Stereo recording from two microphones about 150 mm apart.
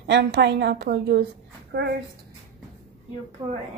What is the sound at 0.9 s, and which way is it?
Speech, 90° right.